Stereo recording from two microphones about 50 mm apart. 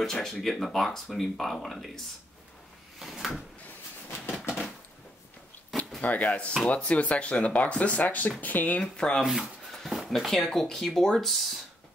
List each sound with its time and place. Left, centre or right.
0.0 s speech: centre
3.0 s speech: centre
5.9 s speech: left
8.8 s speech: centre
9.2 s speech: centre
9.7 s speech: centre